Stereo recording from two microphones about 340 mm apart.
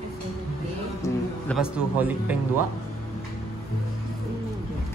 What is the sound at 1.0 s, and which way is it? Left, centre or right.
A man's voice, centre.